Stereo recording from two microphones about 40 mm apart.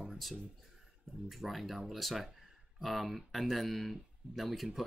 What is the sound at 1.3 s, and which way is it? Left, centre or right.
Speech, centre.